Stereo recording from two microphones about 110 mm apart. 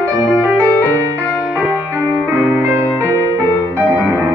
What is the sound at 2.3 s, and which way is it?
Music, 20° right (ahead or behind).